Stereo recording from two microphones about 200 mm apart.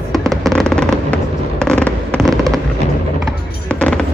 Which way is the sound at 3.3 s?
5° left (ahead or behind).